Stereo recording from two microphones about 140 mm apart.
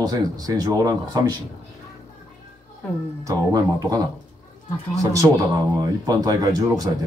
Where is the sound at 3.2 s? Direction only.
25° right (ahead or behind).